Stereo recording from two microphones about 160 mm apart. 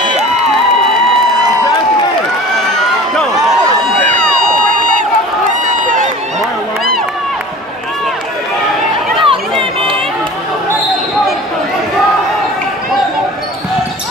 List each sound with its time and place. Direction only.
9.2 s chatter: 35° right (ahead or behind)